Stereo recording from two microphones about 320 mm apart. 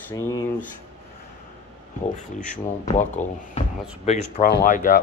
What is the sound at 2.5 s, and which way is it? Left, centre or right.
Speech, left.